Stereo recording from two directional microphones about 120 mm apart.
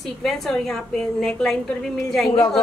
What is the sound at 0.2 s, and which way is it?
A woman's voice, 5° left (ahead or behind).